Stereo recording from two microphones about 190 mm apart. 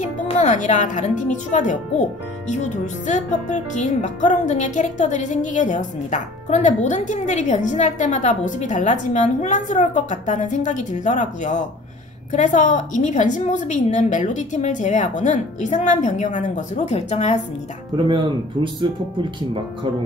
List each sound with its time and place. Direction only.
0.0 s a woman's voice: 40° left (ahead or behind)
17.9 s speech: 25° right (ahead or behind)